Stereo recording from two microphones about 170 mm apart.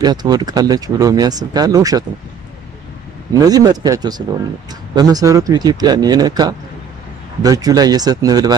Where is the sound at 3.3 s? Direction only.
20° right (ahead or behind).